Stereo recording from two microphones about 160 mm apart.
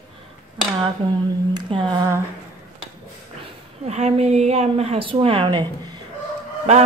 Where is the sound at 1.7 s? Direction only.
30° right (ahead or behind).